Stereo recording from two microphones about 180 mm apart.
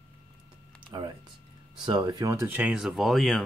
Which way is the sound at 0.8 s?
25° right (ahead or behind).